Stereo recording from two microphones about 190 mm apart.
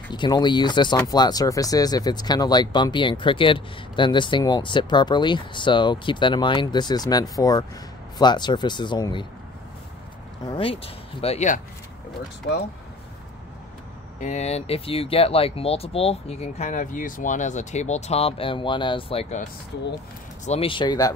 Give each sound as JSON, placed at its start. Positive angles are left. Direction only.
{"t": 0.1, "sound": "speech", "side_deg": 25}
{"t": 10.4, "sound": "speech", "side_deg": 25}
{"t": 14.2, "sound": "speech", "side_deg": 35}
{"t": 20.4, "sound": "speech", "side_deg": 30}